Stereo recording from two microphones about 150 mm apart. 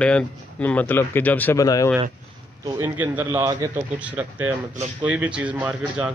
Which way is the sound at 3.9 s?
10° right (ahead or behind).